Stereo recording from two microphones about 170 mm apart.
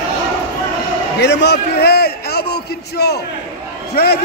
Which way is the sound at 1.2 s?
90° left.